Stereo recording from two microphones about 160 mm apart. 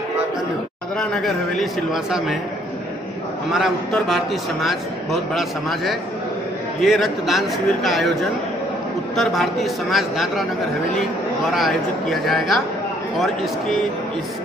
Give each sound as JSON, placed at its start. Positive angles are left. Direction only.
{"t": 0.9, "sound": "a man's voice", "side_deg": 0}
{"t": 3.5, "sound": "a man's voice", "side_deg": 0}
{"t": 11.5, "sound": "a man's voice", "side_deg": 0}